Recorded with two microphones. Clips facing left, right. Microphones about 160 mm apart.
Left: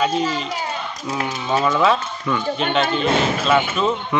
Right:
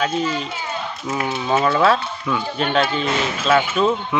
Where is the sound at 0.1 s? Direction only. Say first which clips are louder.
Left 1 dB; 35° left (ahead or behind).